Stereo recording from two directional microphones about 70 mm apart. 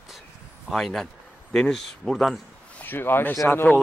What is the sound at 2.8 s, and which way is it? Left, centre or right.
Speech, left.